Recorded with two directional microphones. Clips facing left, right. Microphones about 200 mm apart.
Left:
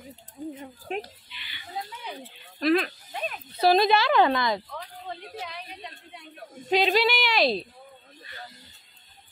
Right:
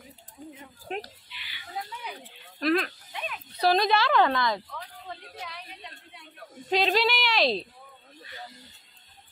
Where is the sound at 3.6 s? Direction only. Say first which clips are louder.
Left 3 dB; 10° left (ahead or behind).